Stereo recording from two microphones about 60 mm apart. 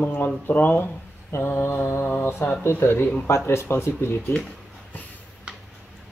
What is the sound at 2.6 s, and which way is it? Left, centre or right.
Speech, left.